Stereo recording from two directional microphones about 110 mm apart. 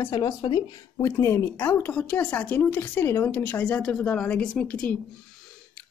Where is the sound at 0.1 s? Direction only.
35° left (ahead or behind).